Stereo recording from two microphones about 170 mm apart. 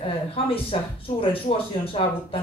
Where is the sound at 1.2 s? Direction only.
35° left (ahead or behind).